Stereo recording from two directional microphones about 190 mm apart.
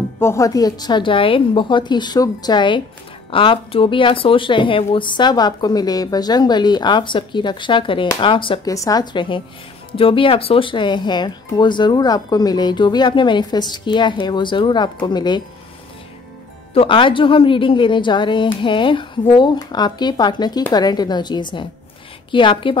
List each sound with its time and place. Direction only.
0.2 s speech: 15° left (ahead or behind)
16.7 s speech: 25° left (ahead or behind)